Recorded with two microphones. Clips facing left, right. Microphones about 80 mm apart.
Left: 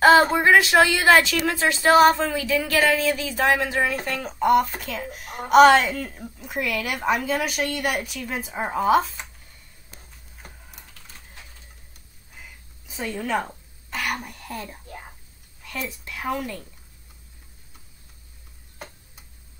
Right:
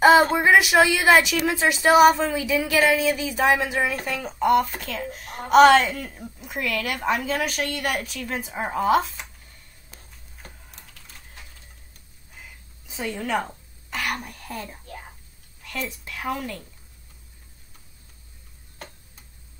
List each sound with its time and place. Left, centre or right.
0.2 s speech: centre
4.2 s a woman's voice: centre
9.9 s typing: centre
12.8 s a woman's voice: centre